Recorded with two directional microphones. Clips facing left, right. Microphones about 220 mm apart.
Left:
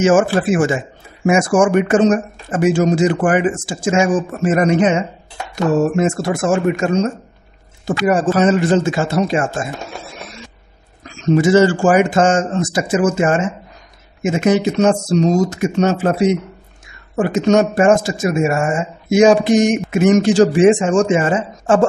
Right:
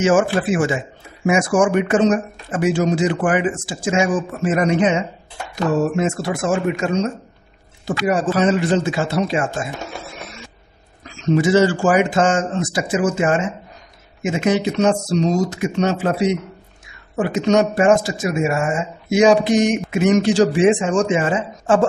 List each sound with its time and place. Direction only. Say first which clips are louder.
0.0 s speech: left 3 dB; 45° left (ahead or behind)
11.1 s speech: left 3 dB; 45° left (ahead or behind)